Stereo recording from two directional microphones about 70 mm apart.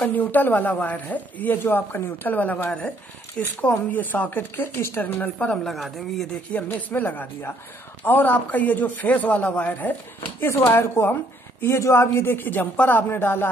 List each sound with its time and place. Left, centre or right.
0.1 s speech: left
5.7 s speech: centre
6.5 s speech: left
10.4 s speech: left